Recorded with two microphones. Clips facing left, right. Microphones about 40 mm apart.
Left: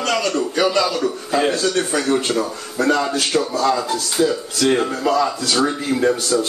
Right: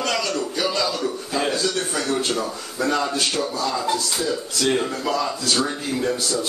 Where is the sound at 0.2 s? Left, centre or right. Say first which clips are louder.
Left 5 dB; left.